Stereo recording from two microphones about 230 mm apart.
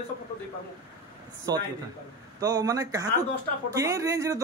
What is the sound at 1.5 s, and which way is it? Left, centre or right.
Speech, centre.